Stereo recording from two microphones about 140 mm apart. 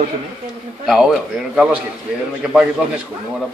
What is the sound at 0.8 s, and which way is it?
Speech, centre (ahead or behind).